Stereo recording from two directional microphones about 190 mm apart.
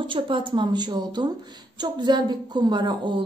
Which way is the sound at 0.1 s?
25° right (ahead or behind).